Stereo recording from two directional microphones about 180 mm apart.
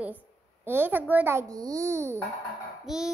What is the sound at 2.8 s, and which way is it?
Speech, 5° right (ahead or behind).